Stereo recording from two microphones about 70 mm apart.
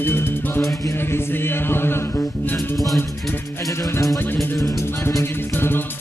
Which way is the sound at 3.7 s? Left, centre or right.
Left.